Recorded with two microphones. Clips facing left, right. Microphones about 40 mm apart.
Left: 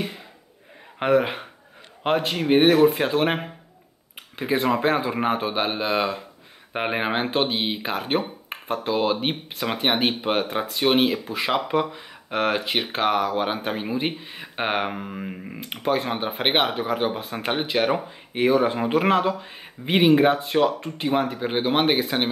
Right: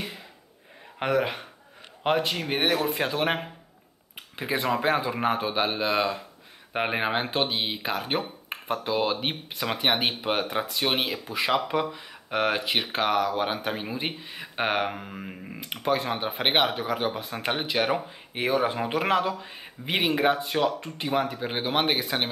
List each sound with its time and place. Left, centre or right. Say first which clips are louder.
0.9 s speech: left 5 dB; centre